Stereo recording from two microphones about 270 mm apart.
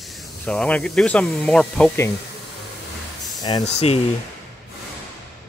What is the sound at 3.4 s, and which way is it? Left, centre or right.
Speech, centre.